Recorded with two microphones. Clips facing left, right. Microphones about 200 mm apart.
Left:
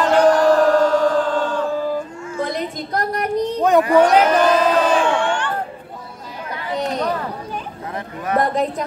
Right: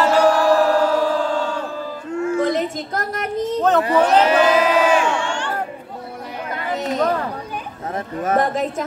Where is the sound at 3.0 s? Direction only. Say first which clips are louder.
Left 6 dB; 40° left (ahead or behind).